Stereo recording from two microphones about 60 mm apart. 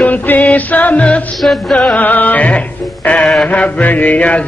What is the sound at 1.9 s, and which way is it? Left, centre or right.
Mantra, left.